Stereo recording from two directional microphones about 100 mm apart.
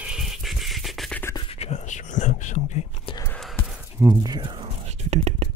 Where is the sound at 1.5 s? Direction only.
90° left.